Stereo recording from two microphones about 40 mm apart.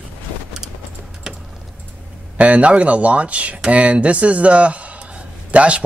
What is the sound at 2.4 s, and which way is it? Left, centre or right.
A man's voice, right.